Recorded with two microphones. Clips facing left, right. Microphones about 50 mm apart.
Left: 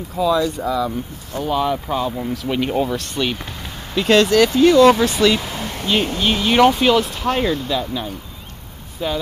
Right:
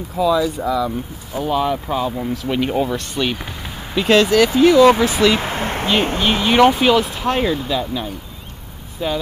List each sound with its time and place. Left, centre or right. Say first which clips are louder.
0.1 s speech: right 1 dB; centre
5.4 s a sound: right 5 dB; right
6.2 s speech: right 1 dB; centre